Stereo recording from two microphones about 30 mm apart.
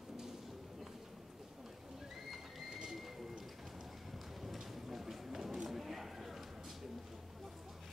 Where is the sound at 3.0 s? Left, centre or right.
Centre.